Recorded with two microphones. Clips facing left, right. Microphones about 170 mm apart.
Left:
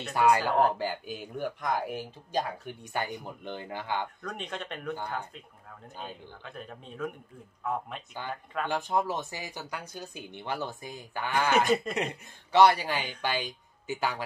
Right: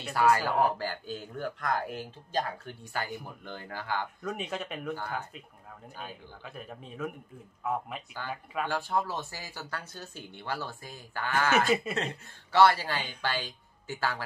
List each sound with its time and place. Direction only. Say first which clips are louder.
0.1 s speech: left 1 dB; 15° left (ahead or behind)
4.2 s speech: right 3 dB; 5° right (ahead or behind)
6.4 s speech: right 1 dB; 5° right (ahead or behind)
8.6 s speech: left 3 dB; 20° left (ahead or behind)